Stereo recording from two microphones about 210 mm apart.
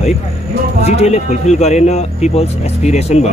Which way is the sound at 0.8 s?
30° left (ahead or behind).